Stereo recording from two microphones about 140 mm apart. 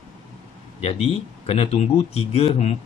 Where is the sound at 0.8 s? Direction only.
45° left (ahead or behind).